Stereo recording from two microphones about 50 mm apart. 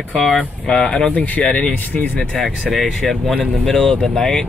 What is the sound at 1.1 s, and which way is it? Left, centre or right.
Speech, left.